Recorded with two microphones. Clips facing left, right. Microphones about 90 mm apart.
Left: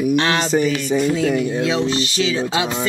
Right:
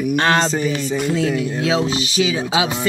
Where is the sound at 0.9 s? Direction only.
15° left (ahead or behind).